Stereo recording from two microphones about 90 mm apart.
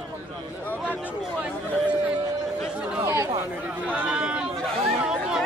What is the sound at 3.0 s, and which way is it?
Chatter, 35° right (ahead or behind).